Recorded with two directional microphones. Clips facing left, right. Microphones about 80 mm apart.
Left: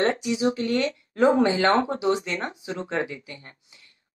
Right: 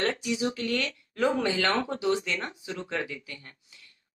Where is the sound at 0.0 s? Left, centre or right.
Left.